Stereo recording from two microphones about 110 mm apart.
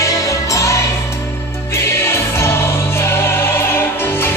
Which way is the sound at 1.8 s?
25° left (ahead or behind).